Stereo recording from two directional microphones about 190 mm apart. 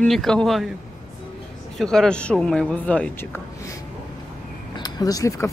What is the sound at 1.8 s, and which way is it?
Speech, 5° left (ahead or behind).